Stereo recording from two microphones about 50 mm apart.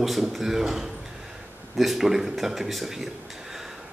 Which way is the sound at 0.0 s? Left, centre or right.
Centre.